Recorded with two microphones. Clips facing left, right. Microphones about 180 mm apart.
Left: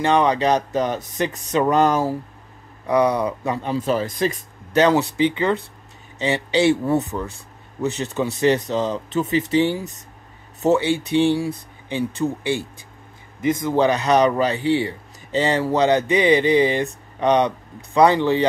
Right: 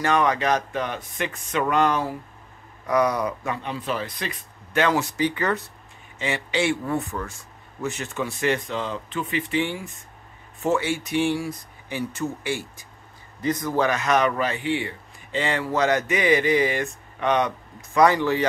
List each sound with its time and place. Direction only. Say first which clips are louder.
0.0 s speech: left 4 dB; 30° left (ahead or behind)
2.9 s speech: left 3 dB; 30° left (ahead or behind)
5.1 s speech: left 5 dB; 25° left (ahead or behind)
6.1 s speech: left 6 dB; 35° left (ahead or behind)
6.9 s speech: left 6 dB; 20° left (ahead or behind)
7.8 s speech: left 6 dB; 35° left (ahead or behind)